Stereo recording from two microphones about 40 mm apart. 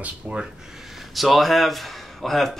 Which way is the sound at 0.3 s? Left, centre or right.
Right.